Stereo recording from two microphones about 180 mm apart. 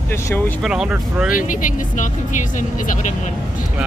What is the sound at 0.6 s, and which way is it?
Speech, 5° right (ahead or behind).